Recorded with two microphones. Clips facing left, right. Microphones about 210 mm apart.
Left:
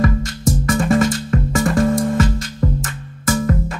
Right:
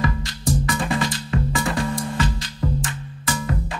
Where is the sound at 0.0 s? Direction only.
45° left (ahead or behind).